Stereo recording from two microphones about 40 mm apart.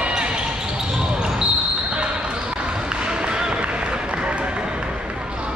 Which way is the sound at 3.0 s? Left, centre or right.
Right.